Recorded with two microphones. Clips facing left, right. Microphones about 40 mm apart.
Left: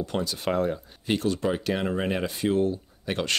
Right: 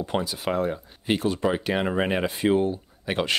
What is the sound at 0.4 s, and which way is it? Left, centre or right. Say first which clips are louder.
Speech: even; centre.